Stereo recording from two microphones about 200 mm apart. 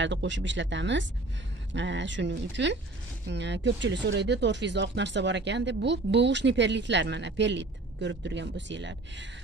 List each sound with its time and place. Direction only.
0.0 s speech: 65° right (ahead or behind)